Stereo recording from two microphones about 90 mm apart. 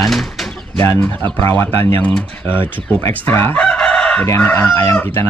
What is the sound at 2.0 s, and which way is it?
Speech, 15° left (ahead or behind).